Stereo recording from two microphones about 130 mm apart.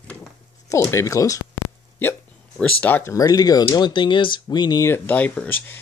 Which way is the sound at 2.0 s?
10° left (ahead or behind).